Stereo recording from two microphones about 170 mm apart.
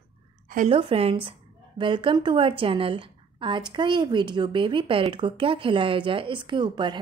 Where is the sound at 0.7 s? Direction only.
35° right (ahead or behind).